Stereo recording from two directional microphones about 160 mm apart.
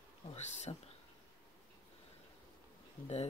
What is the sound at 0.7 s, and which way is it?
Speech, 35° left (ahead or behind).